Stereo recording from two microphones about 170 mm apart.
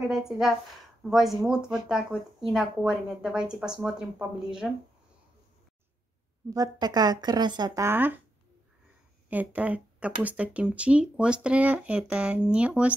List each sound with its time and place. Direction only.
0.1 s speech: 5° right (ahead or behind)
6.5 s speech: 20° right (ahead or behind)
9.3 s speech: 10° right (ahead or behind)